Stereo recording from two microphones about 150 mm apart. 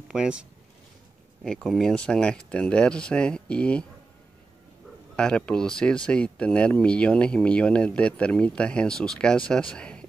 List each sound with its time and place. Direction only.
0.1 s speech: 5° right (ahead or behind)
1.4 s speech: 5° left (ahead or behind)
5.1 s speech: 5° left (ahead or behind)